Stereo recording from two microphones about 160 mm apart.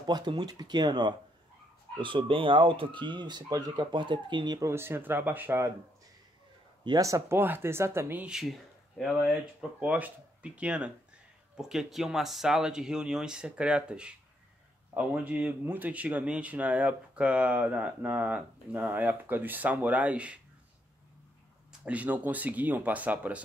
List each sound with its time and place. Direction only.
0.0 s speech: 30° right (ahead or behind)
4.6 s speech: 15° right (ahead or behind)
6.8 s speech: 25° right (ahead or behind); by 20.3 s 10° right (ahead or behind)
21.8 s speech: 10° right (ahead or behind)